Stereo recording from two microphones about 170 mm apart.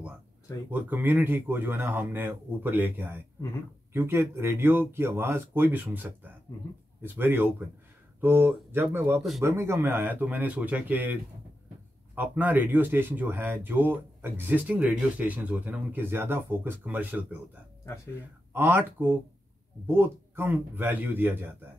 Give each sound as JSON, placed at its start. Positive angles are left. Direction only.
{"t": 0.7, "sound": "speech", "side_deg": -10}
{"t": 12.2, "sound": "speech", "side_deg": -10}
{"t": 18.5, "sound": "speech", "side_deg": -10}